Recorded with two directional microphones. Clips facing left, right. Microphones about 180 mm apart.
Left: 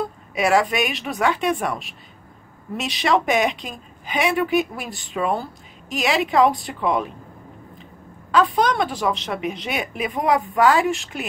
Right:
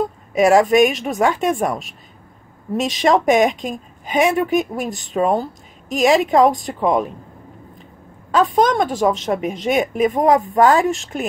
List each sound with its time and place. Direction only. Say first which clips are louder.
0.0 s a woman's voice: right 7 dB; 45° right (ahead or behind)
8.3 s a woman's voice: right 3 dB; 45° right (ahead or behind)